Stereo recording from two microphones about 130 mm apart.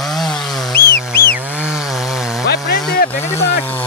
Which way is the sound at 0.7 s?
20° left (ahead or behind).